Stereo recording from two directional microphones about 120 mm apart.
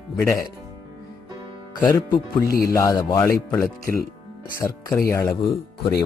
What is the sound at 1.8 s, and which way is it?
Speech, 35° left (ahead or behind).